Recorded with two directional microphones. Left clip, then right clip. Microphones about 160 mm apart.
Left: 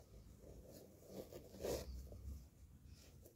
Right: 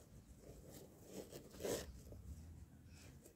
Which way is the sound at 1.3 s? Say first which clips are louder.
Right 1 dB; 20° right (ahead or behind).